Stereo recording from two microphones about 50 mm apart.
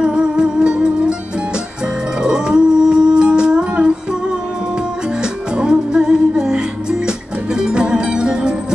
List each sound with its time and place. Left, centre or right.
0.0 s music: centre
2.2 s music: centre
5.2 s music: centre